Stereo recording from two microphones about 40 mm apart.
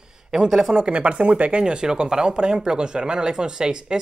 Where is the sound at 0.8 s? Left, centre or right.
Right.